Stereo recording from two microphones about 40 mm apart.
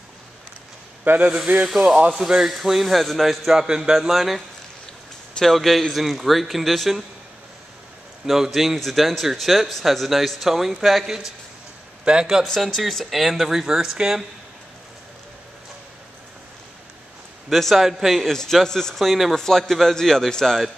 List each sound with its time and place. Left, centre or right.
1.1 s a man's voice: right
2.0 s a man's voice: centre
3.5 s a man's voice: centre
4.1 s speech: centre
5.4 s speech: centre
8.3 s speech: centre
12.0 s a man's voice: right
12.4 s speech: centre
13.7 s a man's voice: centre
17.5 s a man's voice: centre
18.2 s a man's voice: centre
18.9 s speech: centre
19.3 s a man's voice: centre